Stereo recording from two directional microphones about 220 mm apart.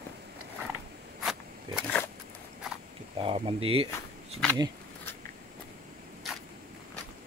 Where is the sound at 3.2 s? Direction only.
25° right (ahead or behind).